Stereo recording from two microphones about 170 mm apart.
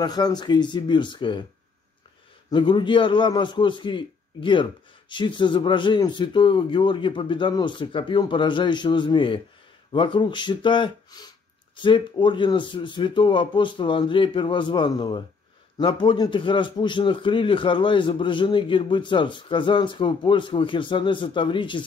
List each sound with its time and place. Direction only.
0.0 s a man's voice: 25° left (ahead or behind)
2.5 s a man's voice: 30° left (ahead or behind)